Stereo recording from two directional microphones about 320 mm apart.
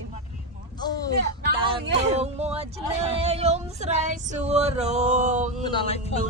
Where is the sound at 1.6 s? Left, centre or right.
Centre.